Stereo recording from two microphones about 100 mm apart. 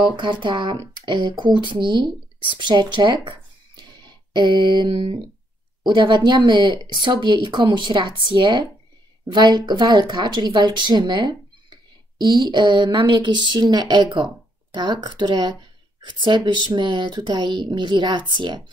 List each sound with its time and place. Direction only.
0.1 s a woman's voice: 50° right (ahead or behind)